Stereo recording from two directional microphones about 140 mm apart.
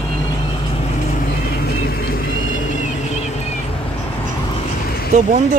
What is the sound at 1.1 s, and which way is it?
Vehicle, 85° left.